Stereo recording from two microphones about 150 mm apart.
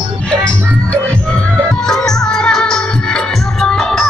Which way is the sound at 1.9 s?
5° left (ahead or behind).